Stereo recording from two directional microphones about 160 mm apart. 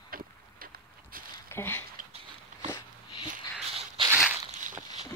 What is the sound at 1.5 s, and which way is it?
Speech, 15° left (ahead or behind).